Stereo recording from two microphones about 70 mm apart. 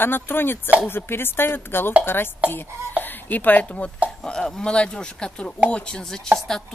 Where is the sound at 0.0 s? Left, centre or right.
Left.